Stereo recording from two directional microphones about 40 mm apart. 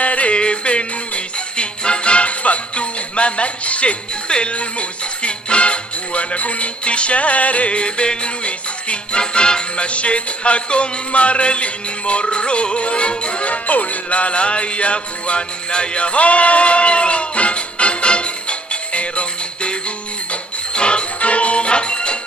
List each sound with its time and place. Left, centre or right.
0.0 s music: left
20.7 s jingle bell: left